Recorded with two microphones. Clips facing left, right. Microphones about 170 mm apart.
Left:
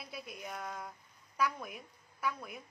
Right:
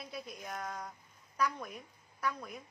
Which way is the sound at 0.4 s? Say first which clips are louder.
Even; 5° left (ahead or behind).